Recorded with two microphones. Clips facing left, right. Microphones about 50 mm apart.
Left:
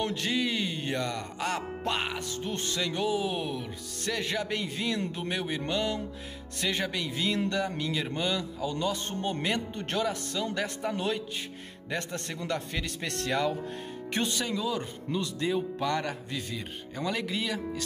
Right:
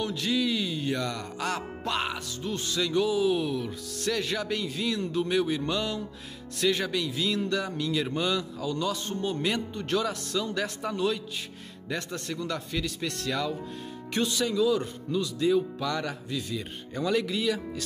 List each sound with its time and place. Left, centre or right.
0.0 s music: left
1.0 s speech: left
2.1 s music: left
2.8 s speech: left
7.1 s music: left
7.7 s speech: left
9.8 s music: left
10.2 s speech: left
11.0 s speech: left
12.3 s music: left
13.3 s speech: left
16.5 s speech: centre